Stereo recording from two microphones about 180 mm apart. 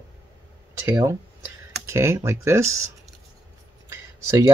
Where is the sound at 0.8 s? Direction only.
15° right (ahead or behind).